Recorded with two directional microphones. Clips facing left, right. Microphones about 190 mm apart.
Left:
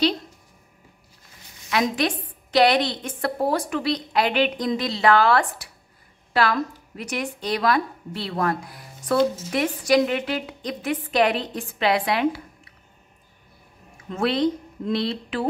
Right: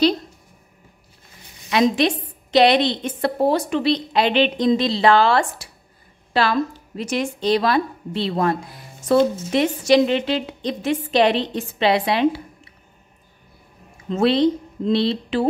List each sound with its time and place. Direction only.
1.7 s a woman's voice: 25° right (ahead or behind)
14.0 s a woman's voice: 25° right (ahead or behind)